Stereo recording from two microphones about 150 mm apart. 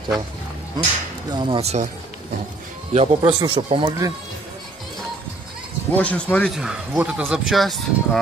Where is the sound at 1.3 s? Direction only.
35° right (ahead or behind).